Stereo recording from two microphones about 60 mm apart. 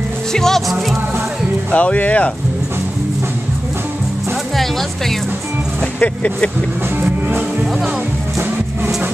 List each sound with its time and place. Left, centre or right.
0.3 s speech: centre
1.7 s speech: left
5.9 s speech: left
7.0 s music: right